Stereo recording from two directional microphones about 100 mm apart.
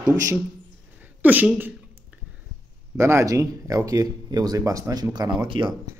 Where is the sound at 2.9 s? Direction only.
25° right (ahead or behind); by 5.7 s 50° right (ahead or behind).